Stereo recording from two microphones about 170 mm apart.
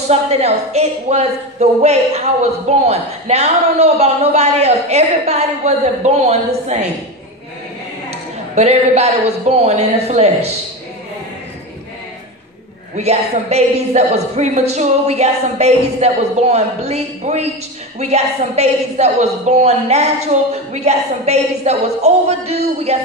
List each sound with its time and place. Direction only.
0.1 s speech: 40° right (ahead or behind)
8.1 s speech: 40° right (ahead or behind)
12.9 s speech: 40° right (ahead or behind)